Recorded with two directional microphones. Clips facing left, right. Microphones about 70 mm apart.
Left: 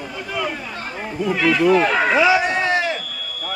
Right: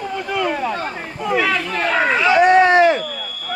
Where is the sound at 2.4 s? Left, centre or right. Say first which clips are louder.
Right 9 dB; right.